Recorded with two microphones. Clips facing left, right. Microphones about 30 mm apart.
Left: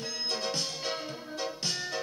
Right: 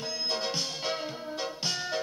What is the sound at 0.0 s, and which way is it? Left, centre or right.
Music, centre.